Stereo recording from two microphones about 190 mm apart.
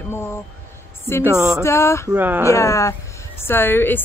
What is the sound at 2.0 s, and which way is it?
Speech, 10° right (ahead or behind).